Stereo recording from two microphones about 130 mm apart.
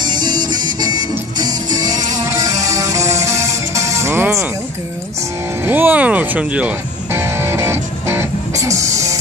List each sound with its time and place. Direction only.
0.0 s music: 35° right (ahead or behind)
5.7 s music: 15° right (ahead or behind)